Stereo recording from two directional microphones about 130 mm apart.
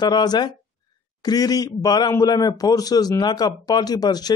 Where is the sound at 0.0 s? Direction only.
30° left (ahead or behind).